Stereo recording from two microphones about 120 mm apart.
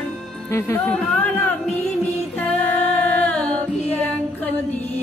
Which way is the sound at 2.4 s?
15° left (ahead or behind).